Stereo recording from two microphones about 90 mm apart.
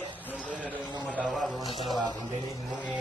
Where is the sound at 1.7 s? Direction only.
Centre (ahead or behind).